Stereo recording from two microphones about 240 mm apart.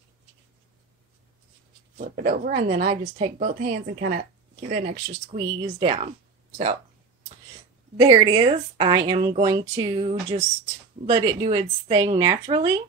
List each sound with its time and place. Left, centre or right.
2.0 s a woman's voice: right
8.0 s a woman's voice: centre